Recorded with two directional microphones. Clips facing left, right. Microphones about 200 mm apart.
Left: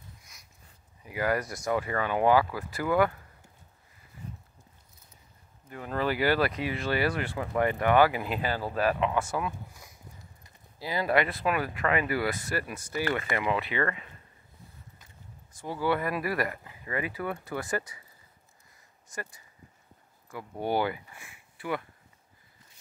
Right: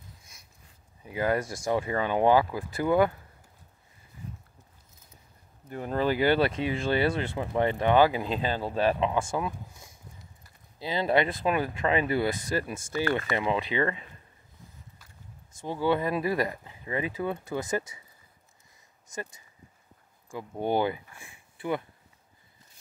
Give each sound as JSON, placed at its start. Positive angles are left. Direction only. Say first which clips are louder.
{"t": 0.2, "sound": "a sound", "louder": "right 1 dB", "side_deg": -25}
{"t": 1.0, "sound": "speech", "louder": "right 2 dB", "side_deg": -25}
{"t": 5.7, "sound": "speech", "louder": "right 4 dB", "side_deg": -40}
{"t": 5.9, "sound": "speech", "louder": "right 2 dB", "side_deg": -25}
{"t": 15.6, "sound": "speech", "louder": "right 2 dB", "side_deg": -20}
{"t": 20.2, "sound": "speech", "louder": "right 2 dB", "side_deg": -20}